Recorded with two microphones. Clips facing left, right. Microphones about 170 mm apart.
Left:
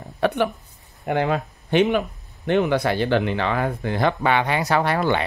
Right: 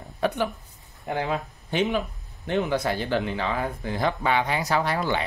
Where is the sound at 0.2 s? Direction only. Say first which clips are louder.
Left 4 dB; 70° left (ahead or behind).